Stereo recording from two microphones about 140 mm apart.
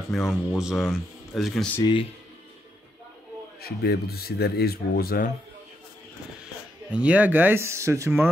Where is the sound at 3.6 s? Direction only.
90° left.